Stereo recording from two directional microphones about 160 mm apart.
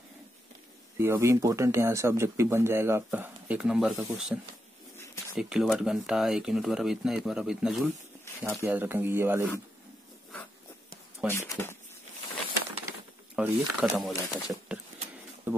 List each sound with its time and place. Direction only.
0.9 s speech: 15° right (ahead or behind)
5.4 s speech: 5° right (ahead or behind)
11.2 s speech: 15° left (ahead or behind)
13.4 s speech: 5° right (ahead or behind)
15.5 s a sound: 15° right (ahead or behind)